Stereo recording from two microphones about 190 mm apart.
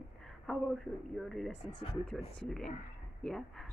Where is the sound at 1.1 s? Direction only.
Centre (ahead or behind).